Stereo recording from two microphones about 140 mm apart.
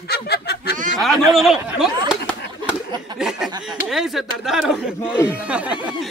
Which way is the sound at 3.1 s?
5° right (ahead or behind).